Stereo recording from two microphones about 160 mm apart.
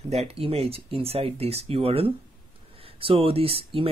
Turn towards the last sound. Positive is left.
turn(degrees=-35)  # may be behind; listen again after turning